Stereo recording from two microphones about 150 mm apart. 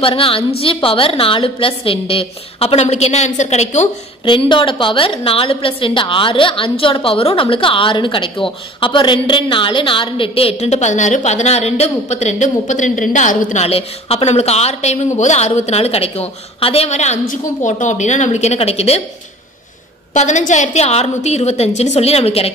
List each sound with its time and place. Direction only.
0.0 s a woman's voice: 35° left (ahead or behind)
4.2 s a woman's voice: 35° left (ahead or behind)
20.2 s a woman's voice: 55° left (ahead or behind)